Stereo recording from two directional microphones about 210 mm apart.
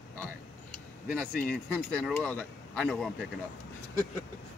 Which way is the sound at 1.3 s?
5° left (ahead or behind).